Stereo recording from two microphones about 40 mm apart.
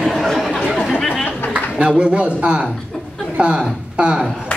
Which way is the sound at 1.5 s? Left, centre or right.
Right.